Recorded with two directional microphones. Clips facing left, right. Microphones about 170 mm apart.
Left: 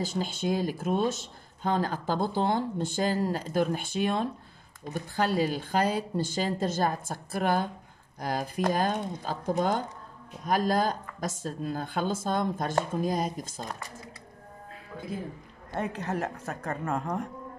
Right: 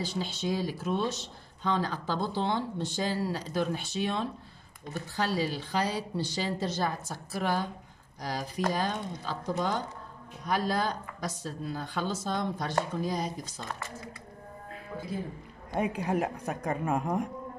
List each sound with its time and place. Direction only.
0.0 s speech: 50° left (ahead or behind)
15.7 s a woman's voice: 10° right (ahead or behind)